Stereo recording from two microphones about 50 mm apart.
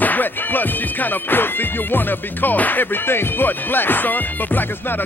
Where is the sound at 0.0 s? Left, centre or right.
Left.